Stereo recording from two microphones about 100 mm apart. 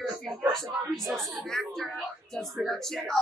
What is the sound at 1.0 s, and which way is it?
A woman's voice, 5° left (ahead or behind).